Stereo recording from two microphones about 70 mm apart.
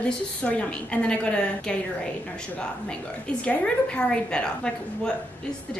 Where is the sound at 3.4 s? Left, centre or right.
Centre.